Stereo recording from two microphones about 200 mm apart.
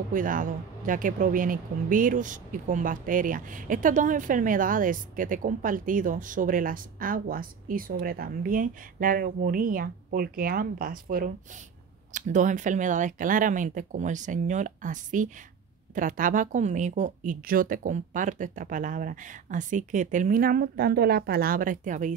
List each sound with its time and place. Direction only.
0.1 s speech: 40° right (ahead or behind)